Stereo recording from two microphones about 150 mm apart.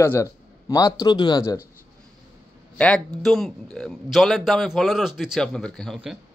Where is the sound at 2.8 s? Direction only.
5° left (ahead or behind).